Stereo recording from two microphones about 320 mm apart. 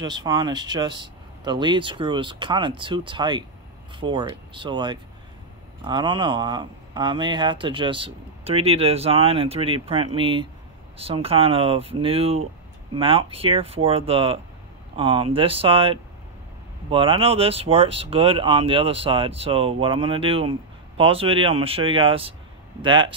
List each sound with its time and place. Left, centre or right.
0.0 s speech: centre